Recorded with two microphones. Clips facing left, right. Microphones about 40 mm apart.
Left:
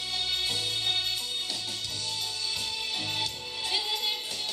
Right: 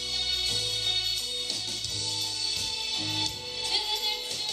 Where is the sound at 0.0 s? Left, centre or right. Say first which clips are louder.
Even; centre.